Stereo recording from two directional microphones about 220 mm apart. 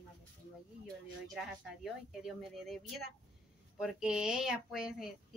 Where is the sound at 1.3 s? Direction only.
Centre (ahead or behind).